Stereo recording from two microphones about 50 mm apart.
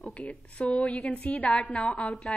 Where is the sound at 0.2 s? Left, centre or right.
Left.